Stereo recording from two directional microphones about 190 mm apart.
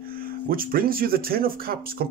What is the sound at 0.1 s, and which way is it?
Speech, 50° right (ahead or behind).